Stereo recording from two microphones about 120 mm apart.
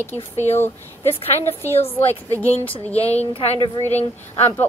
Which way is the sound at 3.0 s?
55° left (ahead or behind).